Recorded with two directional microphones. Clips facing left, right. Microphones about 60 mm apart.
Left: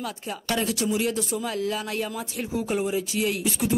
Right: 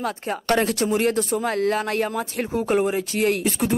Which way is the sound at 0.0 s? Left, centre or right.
Right.